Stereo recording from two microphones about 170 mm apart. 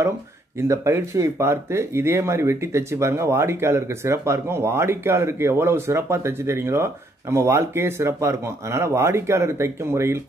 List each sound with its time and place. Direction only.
0.6 s speech: 15° right (ahead or behind)